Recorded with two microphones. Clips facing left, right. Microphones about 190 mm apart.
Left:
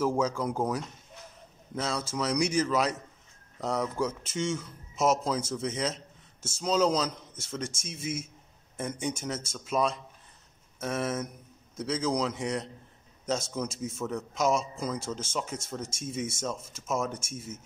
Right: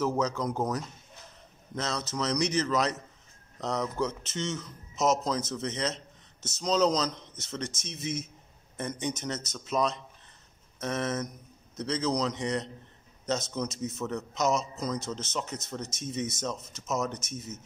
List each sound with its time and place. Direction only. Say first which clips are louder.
0.0 s a man's voice: left 1 dB; 10° left (ahead or behind)